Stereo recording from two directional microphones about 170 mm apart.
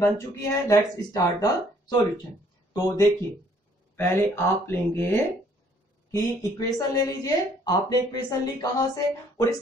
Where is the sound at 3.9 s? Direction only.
15° left (ahead or behind).